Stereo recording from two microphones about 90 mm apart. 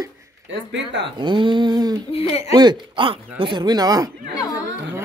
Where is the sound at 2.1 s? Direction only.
90° left.